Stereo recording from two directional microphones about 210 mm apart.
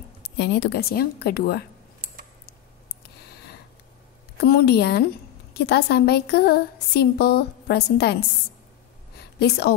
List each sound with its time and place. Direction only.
0.4 s speech: 50° left (ahead or behind)
2.4 s clicking: 50° left (ahead or behind)
4.4 s speech: 50° left (ahead or behind)
9.4 s speech: 50° left (ahead or behind)